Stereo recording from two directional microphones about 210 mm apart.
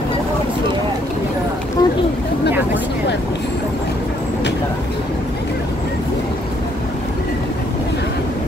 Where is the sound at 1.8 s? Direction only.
20° left (ahead or behind).